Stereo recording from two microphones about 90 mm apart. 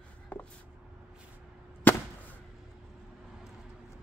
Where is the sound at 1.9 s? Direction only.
20° left (ahead or behind).